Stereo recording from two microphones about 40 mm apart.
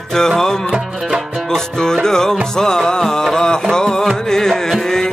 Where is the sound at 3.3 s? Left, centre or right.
Centre.